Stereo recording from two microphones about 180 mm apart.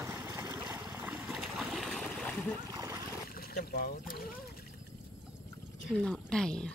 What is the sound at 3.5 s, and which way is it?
Boat, 55° left (ahead or behind).